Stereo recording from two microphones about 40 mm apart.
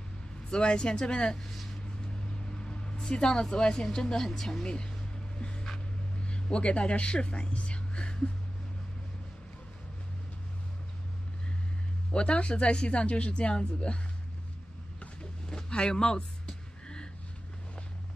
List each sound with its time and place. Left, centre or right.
0.5 s speech: left
2.5 s a woman's voice: left
5.4 s a sound: left
6.2 s speech: left
12.1 s speech: left
15.5 s music: centre